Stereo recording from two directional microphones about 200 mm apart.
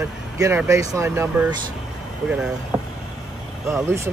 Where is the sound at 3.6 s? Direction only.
15° right (ahead or behind).